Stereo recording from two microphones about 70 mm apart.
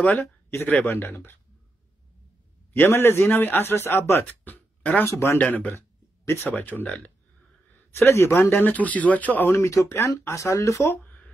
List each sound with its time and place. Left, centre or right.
0.0 s speech: left
2.7 s speech: left
4.1 s a sound: left
5.0 s speech: left
5.4 s speech: left
6.5 s speech: left
7.7 s speech: left
8.6 s speech: left
9.6 s speech: left
11.1 s a sound: left